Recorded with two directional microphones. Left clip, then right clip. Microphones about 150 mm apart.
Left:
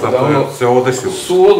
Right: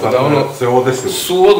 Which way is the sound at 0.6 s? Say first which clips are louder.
Left 2 dB; 35° left (ahead or behind).